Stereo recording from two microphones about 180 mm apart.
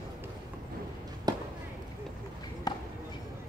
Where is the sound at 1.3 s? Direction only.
20° right (ahead or behind).